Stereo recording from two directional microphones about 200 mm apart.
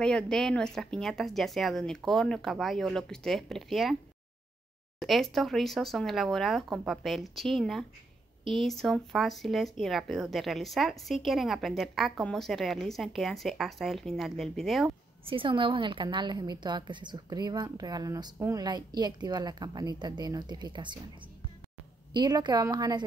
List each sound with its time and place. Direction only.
0.0 s speech: 5° left (ahead or behind)
5.0 s speech: centre (ahead or behind)
15.2 s a woman's voice: 25° right (ahead or behind)
22.1 s a woman's voice: 20° right (ahead or behind)